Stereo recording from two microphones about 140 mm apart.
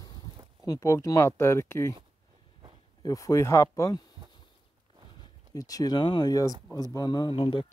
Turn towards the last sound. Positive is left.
turn(degrees=35)  # may be behind; listen again after turning